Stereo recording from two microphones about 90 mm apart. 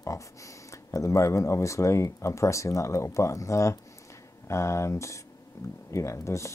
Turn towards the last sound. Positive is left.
turn(degrees=35)  # may be behind; listen again after turning